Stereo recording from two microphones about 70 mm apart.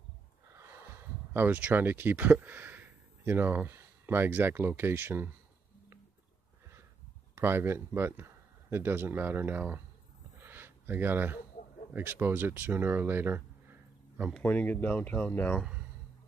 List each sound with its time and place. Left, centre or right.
1.3 s speech: right
7.3 s speech: right
10.4 s a sound: right
11.9 s speech: right
14.4 s speech: left